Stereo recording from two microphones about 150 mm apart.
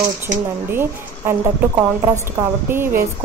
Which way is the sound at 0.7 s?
15° right (ahead or behind).